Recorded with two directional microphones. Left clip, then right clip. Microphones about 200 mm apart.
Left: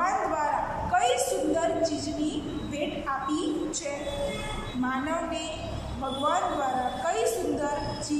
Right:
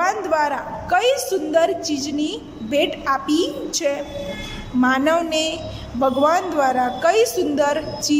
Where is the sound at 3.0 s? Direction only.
45° right (ahead or behind).